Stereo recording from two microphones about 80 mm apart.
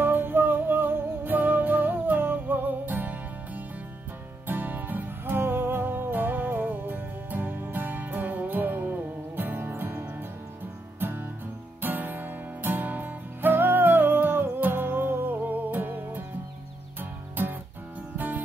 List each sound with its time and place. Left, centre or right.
0.0 s music: right
18.1 s music: right